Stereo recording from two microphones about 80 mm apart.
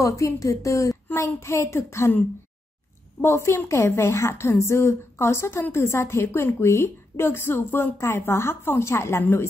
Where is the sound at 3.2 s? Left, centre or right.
Left.